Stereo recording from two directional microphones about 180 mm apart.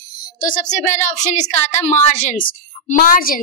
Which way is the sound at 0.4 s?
45° left (ahead or behind).